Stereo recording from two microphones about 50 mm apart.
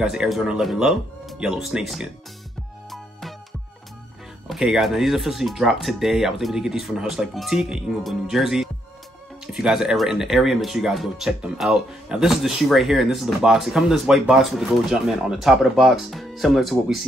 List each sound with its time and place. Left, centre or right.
0.0 s speech: centre
2.9 s music: centre
4.6 s speech: centre